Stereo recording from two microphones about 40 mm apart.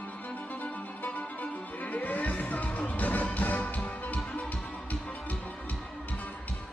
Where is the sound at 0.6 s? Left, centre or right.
Left.